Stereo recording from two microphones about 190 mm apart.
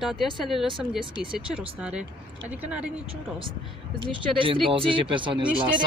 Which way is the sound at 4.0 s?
25° right (ahead or behind).